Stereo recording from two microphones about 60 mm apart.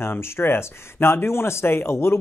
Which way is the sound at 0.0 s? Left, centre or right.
Left.